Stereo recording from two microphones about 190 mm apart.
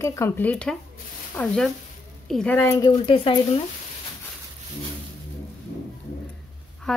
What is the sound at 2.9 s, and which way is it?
Speech, 30° left (ahead or behind).